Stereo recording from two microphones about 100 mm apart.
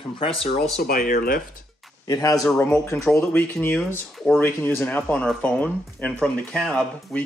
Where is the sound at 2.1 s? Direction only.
35° left (ahead or behind).